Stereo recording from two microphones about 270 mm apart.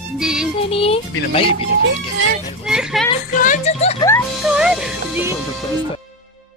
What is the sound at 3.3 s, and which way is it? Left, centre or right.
Speech, left.